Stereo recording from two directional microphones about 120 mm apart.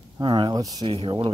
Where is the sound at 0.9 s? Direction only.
45° right (ahead or behind).